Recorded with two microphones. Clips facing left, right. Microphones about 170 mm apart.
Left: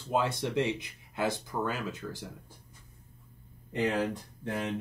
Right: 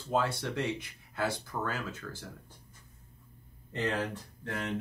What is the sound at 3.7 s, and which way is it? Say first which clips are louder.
Speech: left 3 dB; 15° left (ahead or behind).